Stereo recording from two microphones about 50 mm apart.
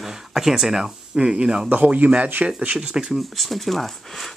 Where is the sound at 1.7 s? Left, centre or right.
Right; by 3.2 s centre.